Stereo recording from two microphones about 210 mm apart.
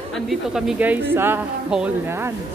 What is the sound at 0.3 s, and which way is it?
Speech, centre (ahead or behind).